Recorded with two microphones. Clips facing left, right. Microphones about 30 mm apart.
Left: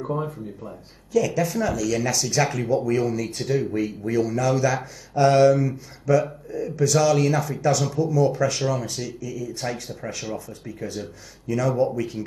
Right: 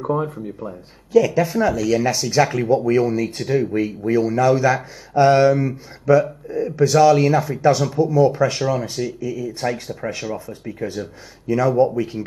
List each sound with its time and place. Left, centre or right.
0.0 s speech: right